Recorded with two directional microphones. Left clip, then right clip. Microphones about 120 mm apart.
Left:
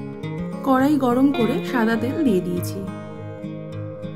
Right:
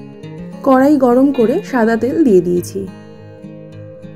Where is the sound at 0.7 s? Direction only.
15° right (ahead or behind).